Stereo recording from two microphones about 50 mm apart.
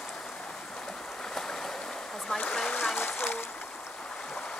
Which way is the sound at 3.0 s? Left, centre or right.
Left.